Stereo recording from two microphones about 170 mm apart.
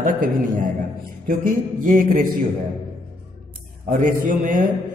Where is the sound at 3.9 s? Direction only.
50° right (ahead or behind).